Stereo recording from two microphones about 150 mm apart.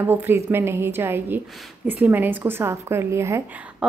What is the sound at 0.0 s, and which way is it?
Speech, 15° right (ahead or behind).